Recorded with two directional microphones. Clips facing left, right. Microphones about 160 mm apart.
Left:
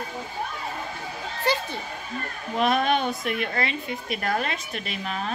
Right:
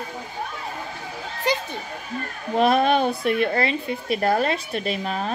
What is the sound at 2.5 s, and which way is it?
A woman's voice, 35° right (ahead or behind).